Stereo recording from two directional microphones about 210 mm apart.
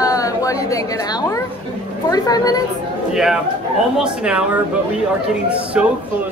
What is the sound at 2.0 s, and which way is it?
Speech, 15° left (ahead or behind).